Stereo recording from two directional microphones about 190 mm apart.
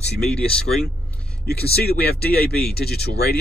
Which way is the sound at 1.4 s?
55° left (ahead or behind).